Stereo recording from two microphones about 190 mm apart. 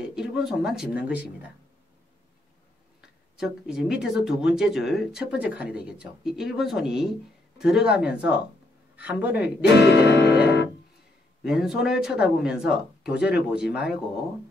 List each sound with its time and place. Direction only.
0.1 s speech: 5° right (ahead or behind)
3.3 s speech: 5° right (ahead or behind)
9.8 s music: 65° left (ahead or behind)
11.4 s speech: 5° right (ahead or behind)